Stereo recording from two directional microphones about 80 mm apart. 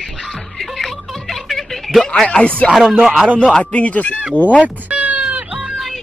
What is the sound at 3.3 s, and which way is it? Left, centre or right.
Speech, centre.